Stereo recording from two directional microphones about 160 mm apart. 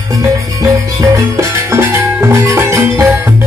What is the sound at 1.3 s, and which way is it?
Music, 15° right (ahead or behind).